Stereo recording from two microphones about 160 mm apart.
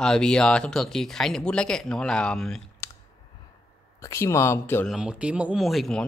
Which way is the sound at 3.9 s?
20° left (ahead or behind).